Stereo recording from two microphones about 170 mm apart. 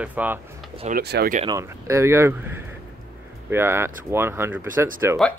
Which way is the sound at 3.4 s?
15° right (ahead or behind).